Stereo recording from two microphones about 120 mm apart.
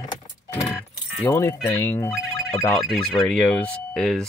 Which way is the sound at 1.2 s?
25° left (ahead or behind).